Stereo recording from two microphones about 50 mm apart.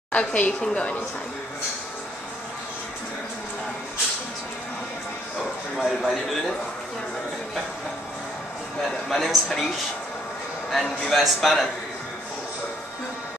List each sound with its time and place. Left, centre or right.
0.1 s a woman's voice: left
0.5 s a woman's voice: centre
5.8 s a man's voice: centre
8.8 s a man's voice: centre